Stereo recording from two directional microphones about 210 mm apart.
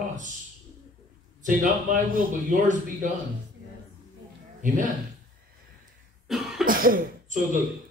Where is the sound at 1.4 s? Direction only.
40° right (ahead or behind).